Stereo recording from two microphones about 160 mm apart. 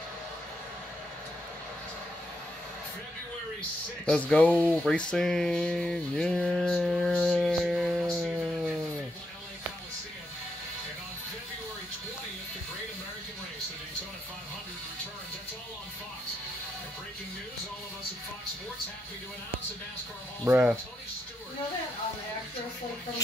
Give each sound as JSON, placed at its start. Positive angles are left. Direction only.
{"t": 4.0, "sound": "speech", "side_deg": 5}
{"t": 4.5, "sound": "speech", "side_deg": -10}
{"t": 4.7, "sound": "speech", "side_deg": 5}
{"t": 7.3, "sound": "music", "side_deg": 0}
{"t": 20.4, "sound": "speech", "side_deg": -5}